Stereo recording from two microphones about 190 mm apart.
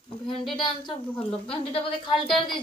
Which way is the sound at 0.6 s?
25° left (ahead or behind).